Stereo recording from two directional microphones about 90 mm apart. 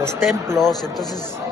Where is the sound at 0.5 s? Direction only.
5° left (ahead or behind).